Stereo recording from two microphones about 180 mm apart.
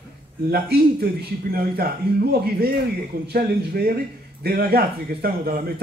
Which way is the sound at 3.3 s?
55° right (ahead or behind).